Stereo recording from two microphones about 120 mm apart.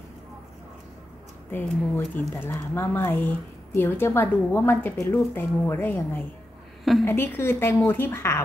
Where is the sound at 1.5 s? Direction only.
15° left (ahead or behind).